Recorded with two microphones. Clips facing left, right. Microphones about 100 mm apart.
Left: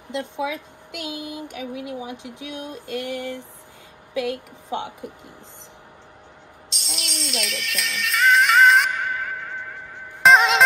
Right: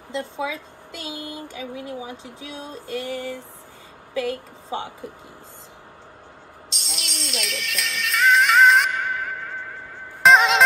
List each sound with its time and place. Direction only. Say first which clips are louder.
0.1 s a woman's voice: left 1 dB; 15° left (ahead or behind)
6.7 s music: left 2 dB; centre (ahead or behind)
10.2 s music: even; centre (ahead or behind)